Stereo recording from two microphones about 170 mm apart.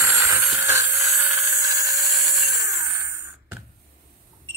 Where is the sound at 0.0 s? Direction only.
15° right (ahead or behind).